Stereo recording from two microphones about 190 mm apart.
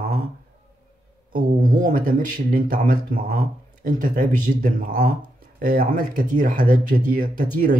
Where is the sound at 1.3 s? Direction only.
45° right (ahead or behind).